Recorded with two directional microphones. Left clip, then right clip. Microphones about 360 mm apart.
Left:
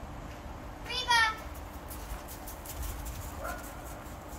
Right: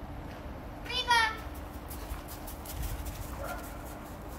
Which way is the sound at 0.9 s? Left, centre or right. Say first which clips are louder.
Even; centre.